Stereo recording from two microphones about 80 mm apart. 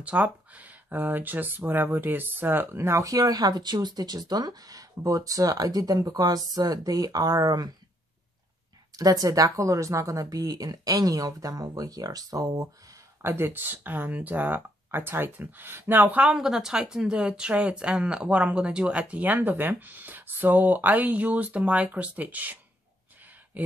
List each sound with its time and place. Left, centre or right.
0.0 s speech: centre; by 7.7 s right
8.9 s speech: right
13.2 s speech: right
16.2 s a woman's voice: centre